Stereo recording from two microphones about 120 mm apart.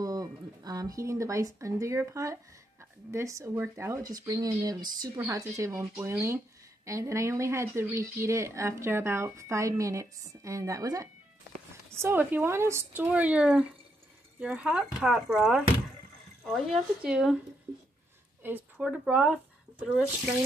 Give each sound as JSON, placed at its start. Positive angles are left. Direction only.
{"t": 0.0, "sound": "speech", "side_deg": -30}
{"t": 12.0, "sound": "speech", "side_deg": -15}
{"t": 18.4, "sound": "speech", "side_deg": -15}